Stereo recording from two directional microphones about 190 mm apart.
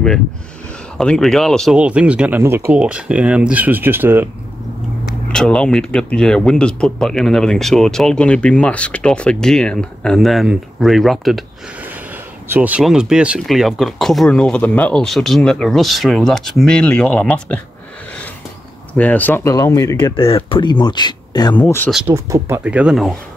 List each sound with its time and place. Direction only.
0.9 s speech: 5° left (ahead or behind)
5.3 s speech: 5° left (ahead or behind)
18.9 s speech: 10° left (ahead or behind)
21.5 s speech: 10° left (ahead or behind)
21.9 s speech: 10° right (ahead or behind)